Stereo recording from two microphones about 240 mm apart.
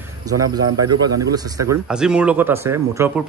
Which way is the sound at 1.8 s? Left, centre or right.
Centre.